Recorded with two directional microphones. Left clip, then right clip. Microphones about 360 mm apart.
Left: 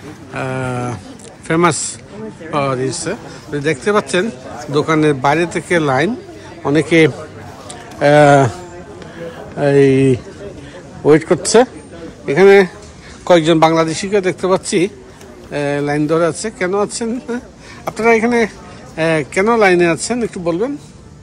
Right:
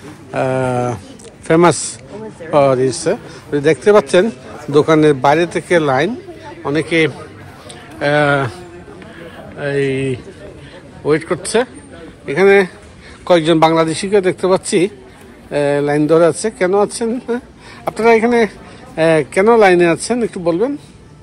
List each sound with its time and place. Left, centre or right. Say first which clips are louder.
0.3 s a man's voice: right 5 dB; centre
9.6 s a man's voice: left 6 dB; centre